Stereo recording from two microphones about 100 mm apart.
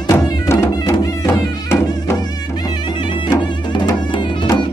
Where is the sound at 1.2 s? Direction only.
25° left (ahead or behind).